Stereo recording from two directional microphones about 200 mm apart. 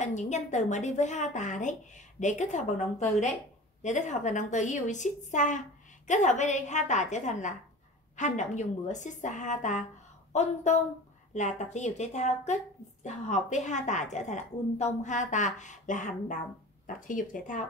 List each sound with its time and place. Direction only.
0.0 s a woman's voice: 35° left (ahead or behind)